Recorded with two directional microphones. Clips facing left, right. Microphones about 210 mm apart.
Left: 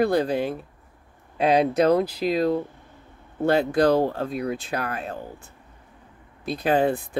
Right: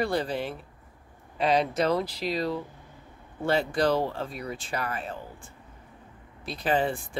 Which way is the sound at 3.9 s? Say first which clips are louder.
Left 6 dB; 45° left (ahead or behind).